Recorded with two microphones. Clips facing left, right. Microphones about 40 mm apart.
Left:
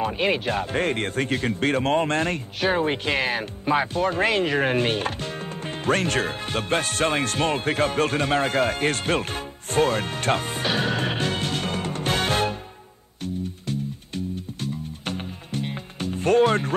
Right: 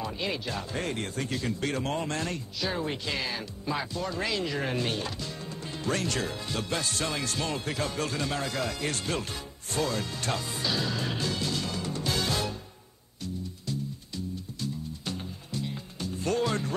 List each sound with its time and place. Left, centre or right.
0.0 s speech: left
13.2 s music: left